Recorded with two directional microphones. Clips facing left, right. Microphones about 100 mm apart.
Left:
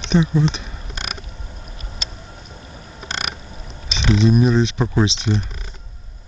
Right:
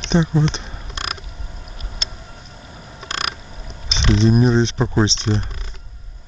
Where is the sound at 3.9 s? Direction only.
30° right (ahead or behind).